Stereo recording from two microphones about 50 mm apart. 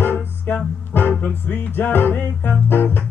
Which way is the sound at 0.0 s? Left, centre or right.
Left.